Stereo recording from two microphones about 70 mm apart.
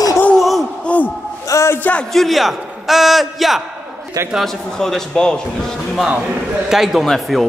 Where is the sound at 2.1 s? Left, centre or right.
Centre.